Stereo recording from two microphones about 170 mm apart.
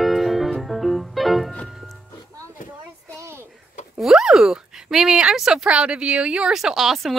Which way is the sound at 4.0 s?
Centre (ahead or behind).